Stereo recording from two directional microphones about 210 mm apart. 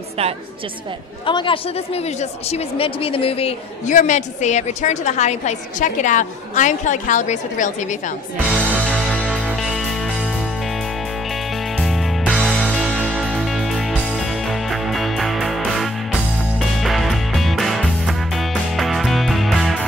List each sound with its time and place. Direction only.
1.2 s a woman's voice: 25° left (ahead or behind)
8.5 s music: 5° right (ahead or behind)
11.8 s music: centre (ahead or behind)